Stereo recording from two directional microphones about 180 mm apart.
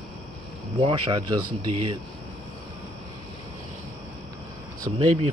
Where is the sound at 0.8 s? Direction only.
25° right (ahead or behind).